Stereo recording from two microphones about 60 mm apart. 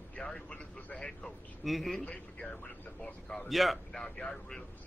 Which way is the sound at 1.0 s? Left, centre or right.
Centre.